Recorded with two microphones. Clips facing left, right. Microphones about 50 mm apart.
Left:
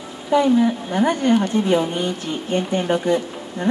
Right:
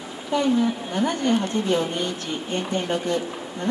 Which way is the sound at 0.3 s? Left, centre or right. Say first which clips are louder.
Left 5 dB; centre.